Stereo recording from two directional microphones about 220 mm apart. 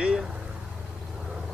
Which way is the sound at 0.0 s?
5° right (ahead or behind).